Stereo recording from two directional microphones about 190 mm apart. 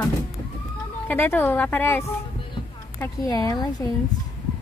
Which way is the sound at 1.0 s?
10° left (ahead or behind).